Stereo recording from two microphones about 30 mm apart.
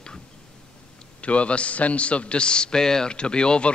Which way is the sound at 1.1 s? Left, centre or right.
Left.